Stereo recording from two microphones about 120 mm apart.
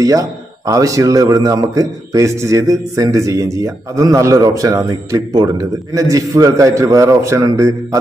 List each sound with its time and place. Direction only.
0.0 s a man's voice: 30° right (ahead or behind)